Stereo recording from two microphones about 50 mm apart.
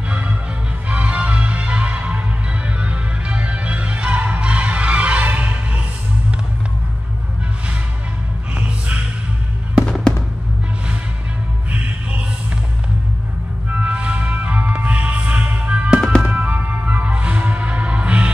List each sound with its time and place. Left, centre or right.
0.8 s music: right
8.6 s music: right
11.7 s music: right
13.7 s music: right